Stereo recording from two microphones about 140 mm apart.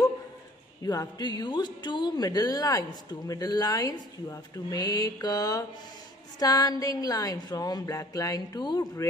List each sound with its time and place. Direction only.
0.8 s speech: 30° left (ahead or behind)